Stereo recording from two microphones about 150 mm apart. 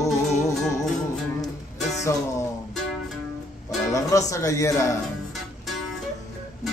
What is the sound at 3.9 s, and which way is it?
Music, 20° left (ahead or behind).